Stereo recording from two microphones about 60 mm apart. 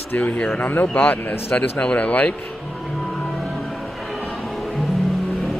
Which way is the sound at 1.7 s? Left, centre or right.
Centre.